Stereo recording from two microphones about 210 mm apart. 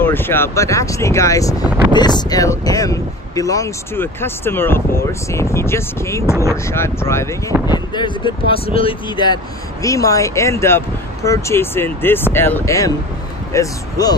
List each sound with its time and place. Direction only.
0.0 s speech: 10° left (ahead or behind)